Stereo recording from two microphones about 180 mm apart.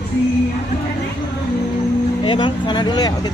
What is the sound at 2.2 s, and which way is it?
Speech, 25° left (ahead or behind).